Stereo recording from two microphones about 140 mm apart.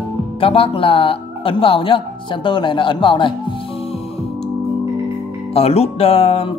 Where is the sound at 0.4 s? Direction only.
40° left (ahead or behind).